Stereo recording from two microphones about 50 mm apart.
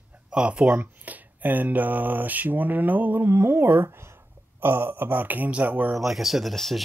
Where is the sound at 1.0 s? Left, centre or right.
Right.